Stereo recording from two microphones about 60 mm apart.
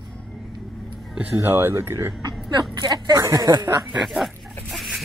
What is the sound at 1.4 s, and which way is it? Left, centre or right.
Speech, right.